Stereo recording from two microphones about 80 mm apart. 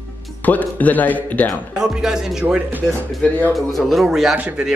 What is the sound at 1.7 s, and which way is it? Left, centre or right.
A man's voice, centre.